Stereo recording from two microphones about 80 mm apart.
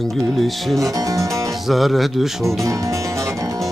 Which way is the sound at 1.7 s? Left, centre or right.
Centre.